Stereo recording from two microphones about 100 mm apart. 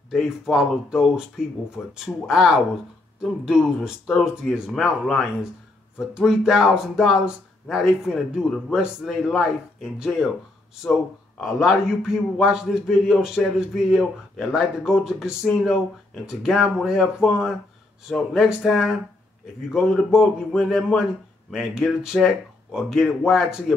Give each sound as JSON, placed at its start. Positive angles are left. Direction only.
{"t": 0.1, "sound": "a man's voice", "side_deg": 0}
{"t": 11.4, "sound": "a man's voice", "side_deg": -5}